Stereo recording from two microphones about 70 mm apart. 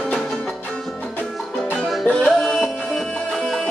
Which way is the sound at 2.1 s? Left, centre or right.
Centre.